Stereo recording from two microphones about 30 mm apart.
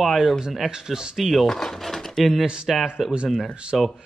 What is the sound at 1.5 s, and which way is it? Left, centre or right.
Speech, centre.